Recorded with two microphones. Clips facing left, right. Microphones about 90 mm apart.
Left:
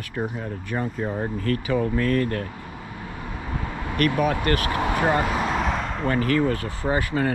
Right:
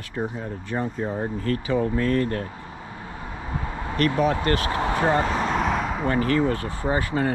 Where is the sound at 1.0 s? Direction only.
25° right (ahead or behind).